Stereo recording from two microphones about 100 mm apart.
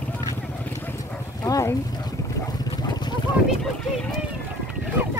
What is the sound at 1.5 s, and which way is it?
Speech, 35° left (ahead or behind).